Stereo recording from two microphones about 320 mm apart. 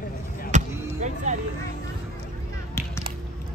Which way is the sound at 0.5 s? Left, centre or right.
Right.